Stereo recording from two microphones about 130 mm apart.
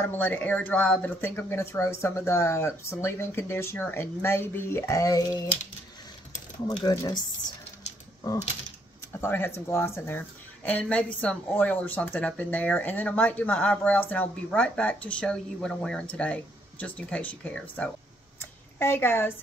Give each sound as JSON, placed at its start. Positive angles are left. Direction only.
{"t": 0.1, "sound": "speech", "side_deg": 15}
{"t": 6.8, "sound": "speech", "side_deg": 30}
{"t": 9.1, "sound": "speech", "side_deg": 15}
{"t": 18.4, "sound": "a sound", "side_deg": 15}